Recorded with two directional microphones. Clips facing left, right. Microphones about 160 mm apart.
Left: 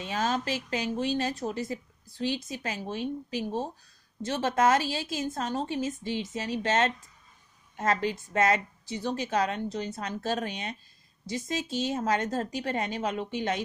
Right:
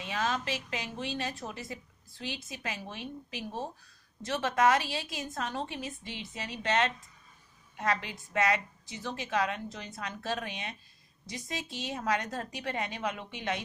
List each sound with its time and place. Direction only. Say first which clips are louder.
0.0 s a woman's voice: left 3 dB; 35° left (ahead or behind)